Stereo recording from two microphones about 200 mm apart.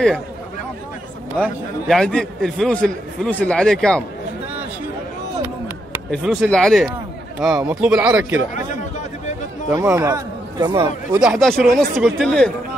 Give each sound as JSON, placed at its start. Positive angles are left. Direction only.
{"t": 1.3, "sound": "a man's voice", "side_deg": 5}
{"t": 6.0, "sound": "a man's voice", "side_deg": 0}
{"t": 9.7, "sound": "speech", "side_deg": -15}
{"t": 11.1, "sound": "a man's voice", "side_deg": 0}